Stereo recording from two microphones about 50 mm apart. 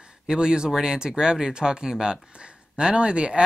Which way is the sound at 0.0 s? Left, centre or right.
Centre.